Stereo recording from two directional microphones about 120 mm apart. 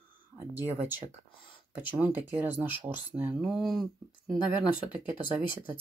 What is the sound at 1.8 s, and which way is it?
Speech, 15° right (ahead or behind).